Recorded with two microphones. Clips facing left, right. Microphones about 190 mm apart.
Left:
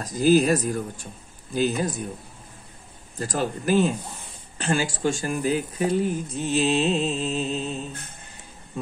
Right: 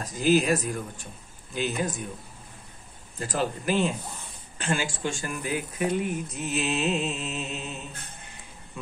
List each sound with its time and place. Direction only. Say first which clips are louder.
0.0 s speech: left 4 dB; 40° left (ahead or behind)
3.2 s speech: left 2 dB; 45° left (ahead or behind)